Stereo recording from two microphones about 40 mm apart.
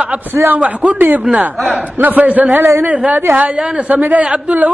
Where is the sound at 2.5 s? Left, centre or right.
Right.